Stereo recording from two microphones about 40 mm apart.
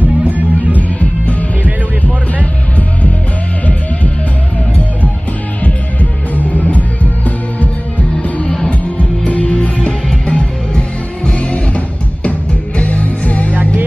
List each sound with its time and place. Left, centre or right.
0.3 s music: right
0.7 s music: left
6.3 s music: left
8.6 s music: left